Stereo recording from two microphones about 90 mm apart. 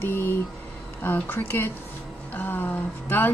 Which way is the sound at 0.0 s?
25° left (ahead or behind).